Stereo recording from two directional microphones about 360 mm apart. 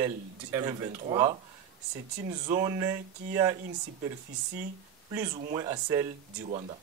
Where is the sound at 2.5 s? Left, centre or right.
Centre.